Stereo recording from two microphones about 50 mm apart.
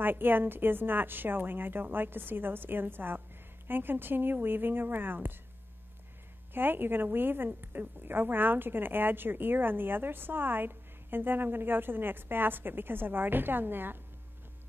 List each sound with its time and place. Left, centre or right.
0.0 s a woman's voice: right
6.5 s a woman's voice: right